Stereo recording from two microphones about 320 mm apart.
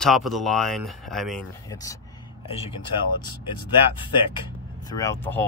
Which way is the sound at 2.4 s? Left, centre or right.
Centre.